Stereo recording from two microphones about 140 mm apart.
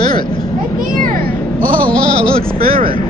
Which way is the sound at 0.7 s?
80° right.